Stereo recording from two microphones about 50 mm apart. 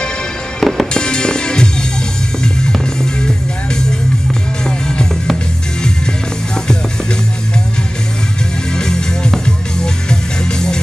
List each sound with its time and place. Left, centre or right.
0.6 s fireworks: centre
0.9 s music: centre
4.6 s music: centre
8.7 s music: centre